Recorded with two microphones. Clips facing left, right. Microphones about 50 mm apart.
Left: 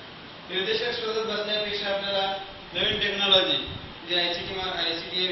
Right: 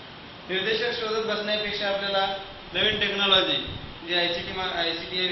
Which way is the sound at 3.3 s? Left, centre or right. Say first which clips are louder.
Left 2 dB; right.